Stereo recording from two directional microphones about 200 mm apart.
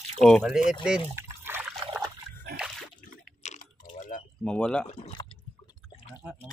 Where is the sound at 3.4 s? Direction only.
40° left (ahead or behind).